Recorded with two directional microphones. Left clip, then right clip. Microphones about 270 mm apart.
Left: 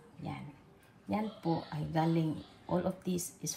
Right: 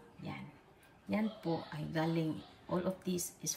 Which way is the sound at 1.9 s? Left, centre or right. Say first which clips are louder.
Left 3 dB; centre.